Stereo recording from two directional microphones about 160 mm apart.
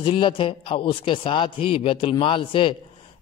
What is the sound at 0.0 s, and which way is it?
A man's voice, 30° left (ahead or behind).